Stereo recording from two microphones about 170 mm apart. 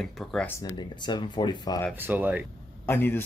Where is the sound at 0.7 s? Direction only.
25° left (ahead or behind).